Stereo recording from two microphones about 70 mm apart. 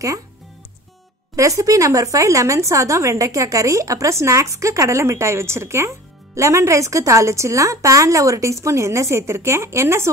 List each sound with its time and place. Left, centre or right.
1.3 s speech: right